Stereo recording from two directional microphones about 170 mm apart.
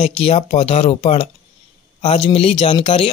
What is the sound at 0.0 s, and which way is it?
Speech, 35° left (ahead or behind).